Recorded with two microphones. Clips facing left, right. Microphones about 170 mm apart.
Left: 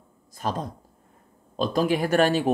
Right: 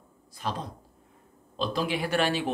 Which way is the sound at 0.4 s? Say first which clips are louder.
Left 4 dB; 45° left (ahead or behind).